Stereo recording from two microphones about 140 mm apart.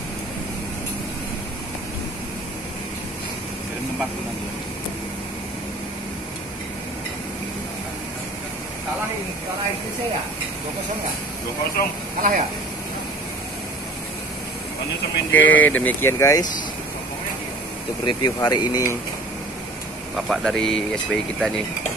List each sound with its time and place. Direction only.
12.2 s speech: 70° right (ahead or behind)
15.3 s speech: 10° left (ahead or behind)
18.0 s speech: 30° left (ahead or behind)
20.2 s speech: centre (ahead or behind)